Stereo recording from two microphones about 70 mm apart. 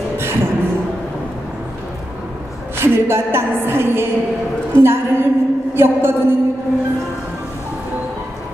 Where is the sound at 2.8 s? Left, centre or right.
Right.